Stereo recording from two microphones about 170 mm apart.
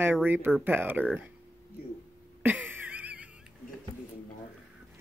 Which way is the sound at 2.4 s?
10° right (ahead or behind).